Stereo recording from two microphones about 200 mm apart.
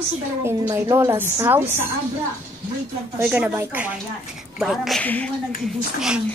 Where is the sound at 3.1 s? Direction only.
5° right (ahead or behind).